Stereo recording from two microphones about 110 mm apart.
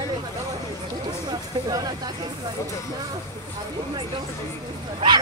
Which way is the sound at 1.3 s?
40° right (ahead or behind).